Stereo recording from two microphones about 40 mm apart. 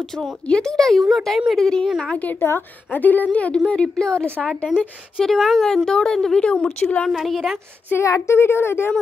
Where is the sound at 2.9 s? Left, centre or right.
Left.